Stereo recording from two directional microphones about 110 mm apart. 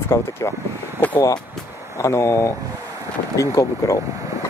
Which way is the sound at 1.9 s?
25° left (ahead or behind).